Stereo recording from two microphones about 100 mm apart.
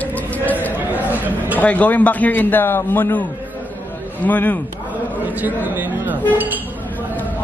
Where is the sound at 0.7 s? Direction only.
15° right (ahead or behind).